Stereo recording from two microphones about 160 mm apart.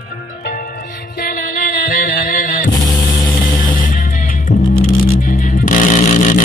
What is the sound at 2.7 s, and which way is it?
Music, 25° left (ahead or behind).